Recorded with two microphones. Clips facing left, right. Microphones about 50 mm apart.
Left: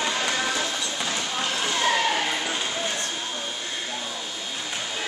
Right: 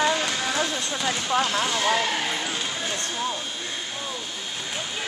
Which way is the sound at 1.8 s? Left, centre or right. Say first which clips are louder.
Left 1 dB; centre.